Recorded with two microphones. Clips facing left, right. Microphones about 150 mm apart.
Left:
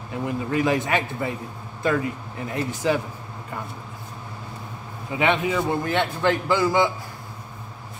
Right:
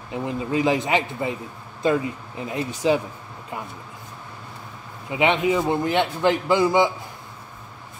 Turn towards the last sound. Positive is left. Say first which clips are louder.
# right 2 dB
turn(degrees=-20)  # may be behind; listen again after turning